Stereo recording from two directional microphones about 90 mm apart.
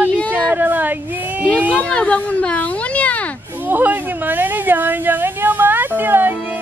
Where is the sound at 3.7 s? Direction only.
20° right (ahead or behind).